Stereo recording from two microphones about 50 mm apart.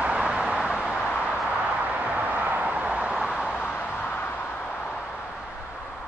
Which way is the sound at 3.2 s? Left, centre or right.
Centre.